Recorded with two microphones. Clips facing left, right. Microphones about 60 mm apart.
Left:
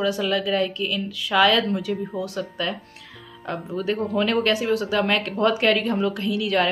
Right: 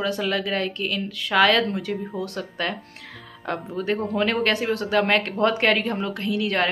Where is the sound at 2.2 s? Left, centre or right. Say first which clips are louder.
Left 1 dB; right.